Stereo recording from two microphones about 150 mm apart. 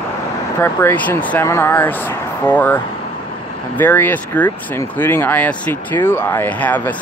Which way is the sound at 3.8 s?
10° left (ahead or behind).